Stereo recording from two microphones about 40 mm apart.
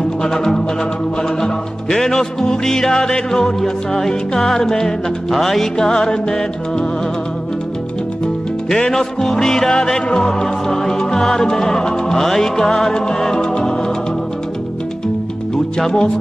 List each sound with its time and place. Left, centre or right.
0.2 s music: centre
8.6 s music: centre
15.5 s music: centre